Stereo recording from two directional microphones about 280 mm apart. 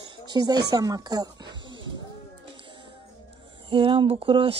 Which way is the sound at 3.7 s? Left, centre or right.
Centre.